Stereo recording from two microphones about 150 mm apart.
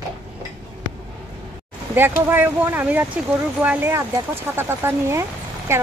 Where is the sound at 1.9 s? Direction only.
15° right (ahead or behind).